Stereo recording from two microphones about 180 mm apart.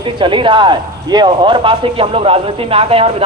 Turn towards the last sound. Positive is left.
turn(degrees=-30)  # may be behind; listen again after turning